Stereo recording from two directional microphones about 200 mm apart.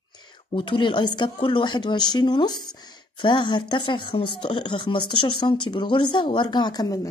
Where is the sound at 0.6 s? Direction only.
25° left (ahead or behind).